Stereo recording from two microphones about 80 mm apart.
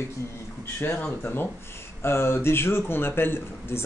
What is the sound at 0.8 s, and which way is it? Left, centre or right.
A man's voice, left.